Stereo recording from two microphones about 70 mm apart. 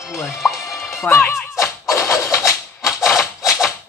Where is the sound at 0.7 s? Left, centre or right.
Left.